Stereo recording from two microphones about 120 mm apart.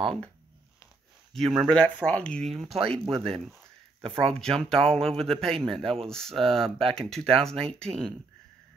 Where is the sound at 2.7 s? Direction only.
50° right (ahead or behind).